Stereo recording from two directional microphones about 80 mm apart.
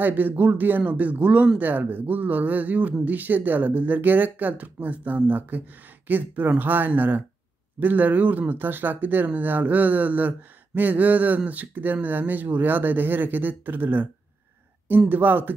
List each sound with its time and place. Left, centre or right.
0.0 s speech: right
15.0 s speech: right